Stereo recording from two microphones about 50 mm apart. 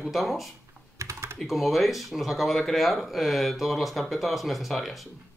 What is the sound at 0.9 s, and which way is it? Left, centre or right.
Typing, right.